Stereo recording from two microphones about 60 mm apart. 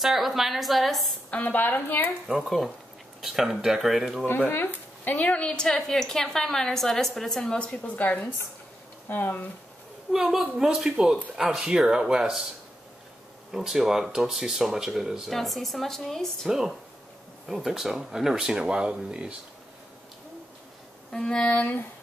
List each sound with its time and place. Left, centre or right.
0.0 s speech: centre
1.3 s speech: left
2.2 s speech: centre
4.5 s speech: left
5.1 s a woman's voice: centre
10.1 s speech: centre
13.5 s speech: centre
16.4 s speech: centre
21.1 s a woman's voice: centre
21.5 s speech: left